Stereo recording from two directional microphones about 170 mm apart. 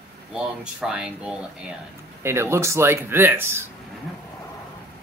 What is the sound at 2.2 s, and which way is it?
Speech, 15° right (ahead or behind).